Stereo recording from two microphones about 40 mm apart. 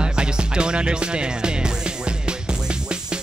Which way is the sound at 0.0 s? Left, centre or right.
Right.